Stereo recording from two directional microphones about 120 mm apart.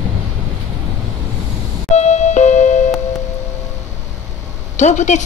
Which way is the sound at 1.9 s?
70° left (ahead or behind).